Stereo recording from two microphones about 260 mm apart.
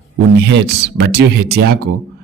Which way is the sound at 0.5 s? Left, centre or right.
Right.